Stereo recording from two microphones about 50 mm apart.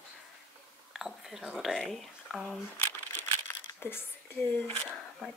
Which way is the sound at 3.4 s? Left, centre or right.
Left.